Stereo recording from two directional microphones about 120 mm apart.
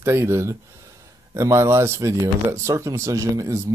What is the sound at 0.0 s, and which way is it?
Speech, 20° right (ahead or behind).